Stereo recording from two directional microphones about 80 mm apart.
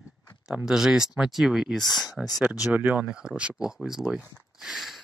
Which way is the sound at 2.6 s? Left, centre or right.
Right.